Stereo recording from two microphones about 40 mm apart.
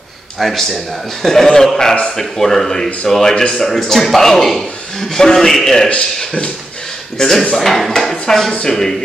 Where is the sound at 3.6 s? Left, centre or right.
Centre.